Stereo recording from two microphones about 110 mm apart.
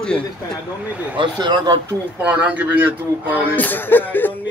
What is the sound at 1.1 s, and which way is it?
Speech, 45° right (ahead or behind).